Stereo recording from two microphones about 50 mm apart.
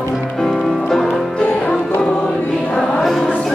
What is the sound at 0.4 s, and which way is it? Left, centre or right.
Music, centre.